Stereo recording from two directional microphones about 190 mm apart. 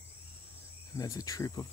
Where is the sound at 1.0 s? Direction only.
20° left (ahead or behind).